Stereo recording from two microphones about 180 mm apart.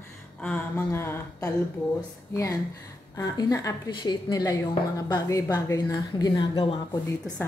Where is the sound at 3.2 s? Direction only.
20° left (ahead or behind).